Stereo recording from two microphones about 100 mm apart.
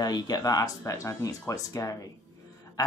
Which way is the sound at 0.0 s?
40° left (ahead or behind).